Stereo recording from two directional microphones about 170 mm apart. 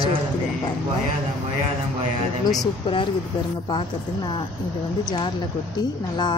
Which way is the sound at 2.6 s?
30° left (ahead or behind).